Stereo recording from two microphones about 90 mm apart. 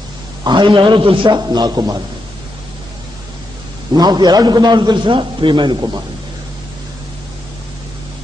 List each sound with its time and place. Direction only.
0.4 s a man's voice: 55° right (ahead or behind)
3.9 s a man's voice: 50° right (ahead or behind)